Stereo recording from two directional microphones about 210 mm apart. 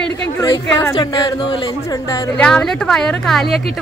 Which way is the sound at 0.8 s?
20° left (ahead or behind).